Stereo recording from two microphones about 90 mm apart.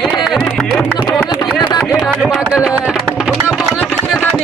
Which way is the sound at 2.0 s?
5° right (ahead or behind).